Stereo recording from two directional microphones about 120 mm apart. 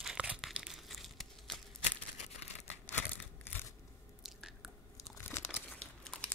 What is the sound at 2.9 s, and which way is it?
Crumpling, 15° left (ahead or behind).